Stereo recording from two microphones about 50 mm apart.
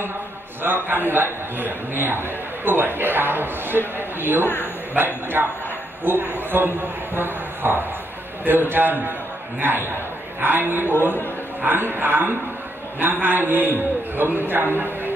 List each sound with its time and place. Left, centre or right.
0.6 s a man's voice: right